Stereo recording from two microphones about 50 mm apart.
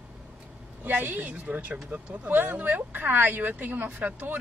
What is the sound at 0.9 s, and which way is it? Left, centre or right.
Speech, right.